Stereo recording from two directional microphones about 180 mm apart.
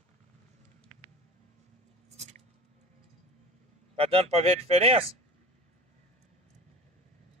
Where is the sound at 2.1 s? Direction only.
40° right (ahead or behind).